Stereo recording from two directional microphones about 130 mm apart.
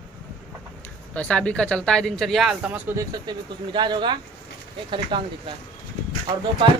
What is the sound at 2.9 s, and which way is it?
Speech, 35° right (ahead or behind).